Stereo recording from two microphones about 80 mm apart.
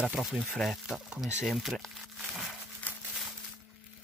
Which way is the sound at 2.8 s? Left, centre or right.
Centre.